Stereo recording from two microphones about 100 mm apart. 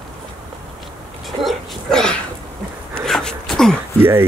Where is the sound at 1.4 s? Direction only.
Centre (ahead or behind).